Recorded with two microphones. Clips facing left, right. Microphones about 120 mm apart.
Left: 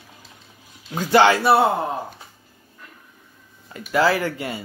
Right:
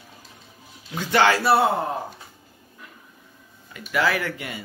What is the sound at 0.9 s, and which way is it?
Speech, 30° left (ahead or behind).